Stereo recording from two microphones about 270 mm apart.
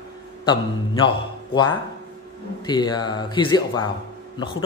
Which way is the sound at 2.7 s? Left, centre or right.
Centre.